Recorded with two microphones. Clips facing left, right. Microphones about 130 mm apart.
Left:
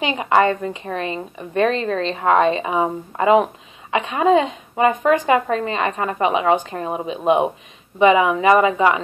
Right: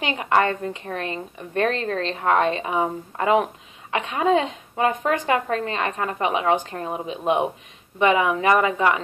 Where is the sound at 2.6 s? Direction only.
60° left (ahead or behind).